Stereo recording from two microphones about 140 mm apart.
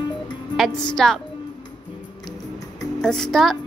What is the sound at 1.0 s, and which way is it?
Speech, centre (ahead or behind).